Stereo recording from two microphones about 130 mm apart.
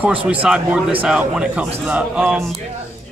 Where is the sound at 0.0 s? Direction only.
10° right (ahead or behind).